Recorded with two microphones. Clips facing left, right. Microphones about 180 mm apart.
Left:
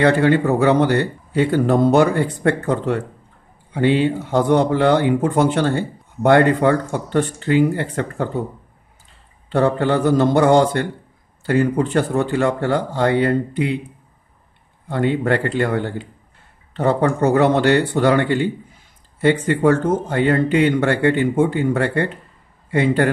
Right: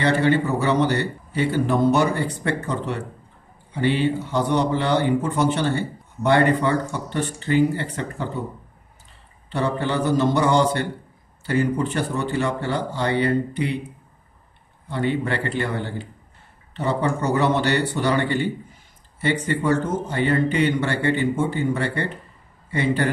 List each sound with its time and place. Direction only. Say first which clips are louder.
0.0 s a man's voice: left 4 dB; 55° left (ahead or behind)
9.5 s speech: left 7 dB; 50° left (ahead or behind)
14.9 s speech: left 5 dB; 50° left (ahead or behind)
19.2 s a man's voice: left 6 dB; 55° left (ahead or behind)